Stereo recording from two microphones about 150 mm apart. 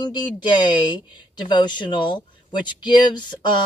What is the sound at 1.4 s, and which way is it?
Speech, 30° left (ahead or behind).